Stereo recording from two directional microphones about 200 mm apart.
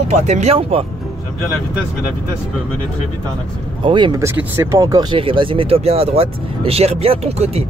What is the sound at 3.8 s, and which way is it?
Speech, 25° right (ahead or behind).